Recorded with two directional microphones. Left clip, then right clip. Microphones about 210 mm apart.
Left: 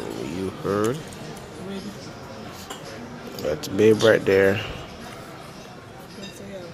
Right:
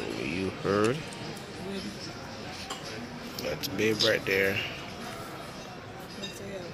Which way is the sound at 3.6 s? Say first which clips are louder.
Left 10 dB; 40° left (ahead or behind).